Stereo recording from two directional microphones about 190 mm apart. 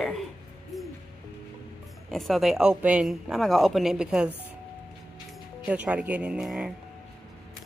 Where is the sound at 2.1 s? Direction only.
Centre (ahead or behind).